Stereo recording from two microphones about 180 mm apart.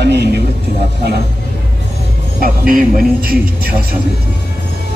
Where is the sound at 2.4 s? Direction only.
50° right (ahead or behind).